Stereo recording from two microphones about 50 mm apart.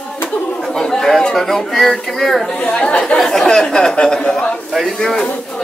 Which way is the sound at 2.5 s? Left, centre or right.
Left.